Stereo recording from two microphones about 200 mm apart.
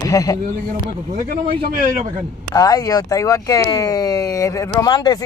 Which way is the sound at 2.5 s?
20° left (ahead or behind).